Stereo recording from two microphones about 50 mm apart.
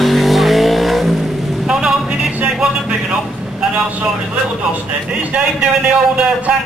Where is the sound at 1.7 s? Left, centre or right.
Centre.